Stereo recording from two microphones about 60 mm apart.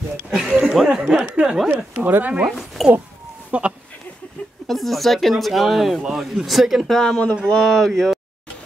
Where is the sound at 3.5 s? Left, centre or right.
Centre.